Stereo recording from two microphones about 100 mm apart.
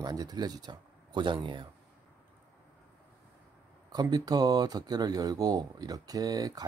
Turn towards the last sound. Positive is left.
turn(degrees=-40)  # may be behind; listen again after turning